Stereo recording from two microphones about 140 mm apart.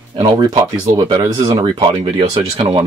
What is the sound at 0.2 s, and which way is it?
Speech, 30° right (ahead or behind).